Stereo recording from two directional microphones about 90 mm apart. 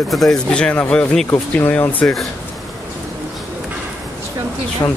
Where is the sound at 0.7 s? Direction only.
20° left (ahead or behind).